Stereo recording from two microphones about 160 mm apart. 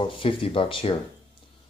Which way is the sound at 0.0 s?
35° left (ahead or behind).